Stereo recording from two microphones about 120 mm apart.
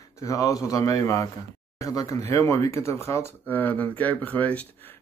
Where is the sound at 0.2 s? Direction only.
30° left (ahead or behind).